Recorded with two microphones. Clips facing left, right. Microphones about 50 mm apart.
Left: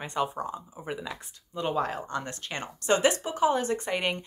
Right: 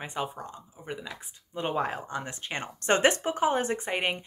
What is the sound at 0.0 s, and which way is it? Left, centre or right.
Speech, centre.